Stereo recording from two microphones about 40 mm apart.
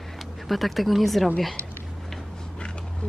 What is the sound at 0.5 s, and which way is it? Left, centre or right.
Speech, centre.